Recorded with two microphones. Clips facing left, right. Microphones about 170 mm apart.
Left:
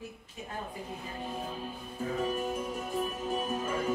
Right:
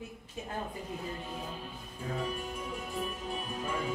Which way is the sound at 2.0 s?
45° left (ahead or behind).